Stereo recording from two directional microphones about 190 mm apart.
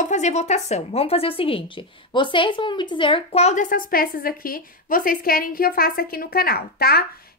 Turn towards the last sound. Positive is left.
turn(degrees=55)  # may be behind; listen again after turning